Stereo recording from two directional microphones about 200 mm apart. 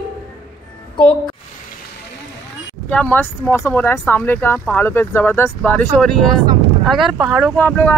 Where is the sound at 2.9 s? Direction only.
5° left (ahead or behind).